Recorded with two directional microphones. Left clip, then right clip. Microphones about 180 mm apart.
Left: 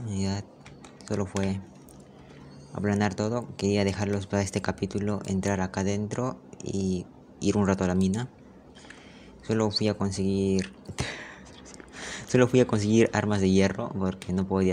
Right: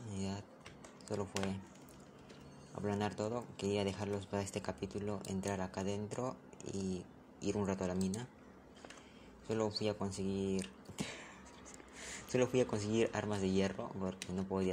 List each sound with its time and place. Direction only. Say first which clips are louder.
0.1 s typing: left 11 dB; 55° left (ahead or behind)
1.0 s speech: left 10 dB; 55° left (ahead or behind)
2.7 s speech: left 11 dB; 55° left (ahead or behind)
9.5 s speech: left 10 dB; 50° left (ahead or behind)